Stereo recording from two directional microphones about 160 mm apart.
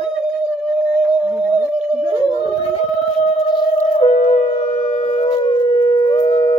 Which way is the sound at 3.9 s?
45° left (ahead or behind).